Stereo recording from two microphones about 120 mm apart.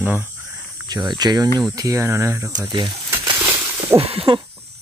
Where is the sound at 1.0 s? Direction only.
35° right (ahead or behind).